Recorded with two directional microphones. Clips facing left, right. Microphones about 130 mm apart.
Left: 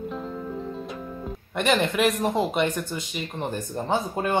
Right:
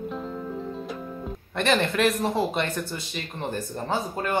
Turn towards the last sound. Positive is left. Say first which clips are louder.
# left 2 dB
turn(degrees=20)  # may be behind; listen again after turning